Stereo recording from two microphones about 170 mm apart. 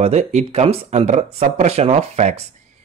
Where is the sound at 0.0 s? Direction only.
40° right (ahead or behind).